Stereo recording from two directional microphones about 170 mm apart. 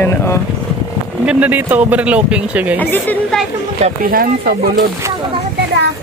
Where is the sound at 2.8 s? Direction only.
10° left (ahead or behind).